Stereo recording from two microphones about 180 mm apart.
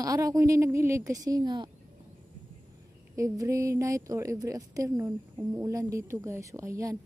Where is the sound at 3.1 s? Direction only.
15° right (ahead or behind).